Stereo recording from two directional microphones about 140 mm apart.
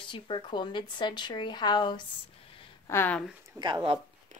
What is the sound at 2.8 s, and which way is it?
Speech, 15° left (ahead or behind).